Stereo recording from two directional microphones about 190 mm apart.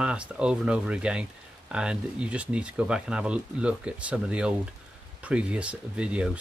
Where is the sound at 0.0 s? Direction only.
5° right (ahead or behind).